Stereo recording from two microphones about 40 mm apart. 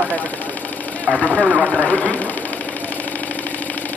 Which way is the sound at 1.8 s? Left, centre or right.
Left.